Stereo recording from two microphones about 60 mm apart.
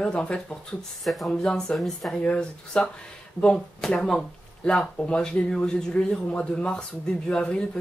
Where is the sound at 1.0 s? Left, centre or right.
Centre.